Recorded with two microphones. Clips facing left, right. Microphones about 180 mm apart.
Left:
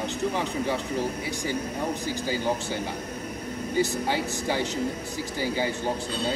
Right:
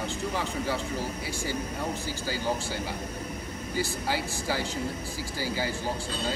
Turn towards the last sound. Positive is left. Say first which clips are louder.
# left 4 dB
turn(degrees=20)  # may be behind; listen again after turning